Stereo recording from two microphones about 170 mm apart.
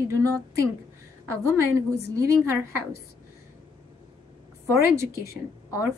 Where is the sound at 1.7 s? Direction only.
20° right (ahead or behind).